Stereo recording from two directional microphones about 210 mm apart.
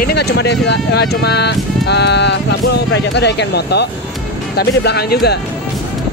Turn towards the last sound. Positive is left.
turn(degrees=50)  # may be behind; listen again after turning